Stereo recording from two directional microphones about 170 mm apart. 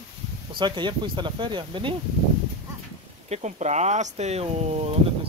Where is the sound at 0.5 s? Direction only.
25° right (ahead or behind).